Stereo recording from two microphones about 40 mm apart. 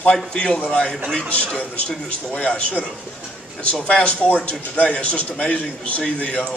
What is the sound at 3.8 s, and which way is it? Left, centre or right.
A man's voice, left.